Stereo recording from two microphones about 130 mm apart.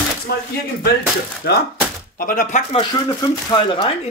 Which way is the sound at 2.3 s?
90° left.